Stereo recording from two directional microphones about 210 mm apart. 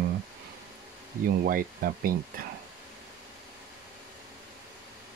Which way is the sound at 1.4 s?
45° right (ahead or behind).